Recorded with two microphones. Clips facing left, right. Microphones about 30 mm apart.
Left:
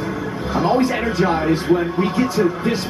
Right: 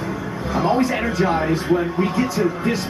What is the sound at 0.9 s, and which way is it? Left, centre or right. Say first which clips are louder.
A man's voice: left 1 dB; centre.